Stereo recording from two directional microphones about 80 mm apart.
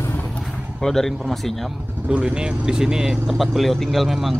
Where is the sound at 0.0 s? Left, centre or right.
Left.